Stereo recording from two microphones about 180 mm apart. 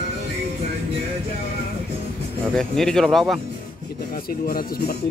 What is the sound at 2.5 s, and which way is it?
Speech, 5° left (ahead or behind).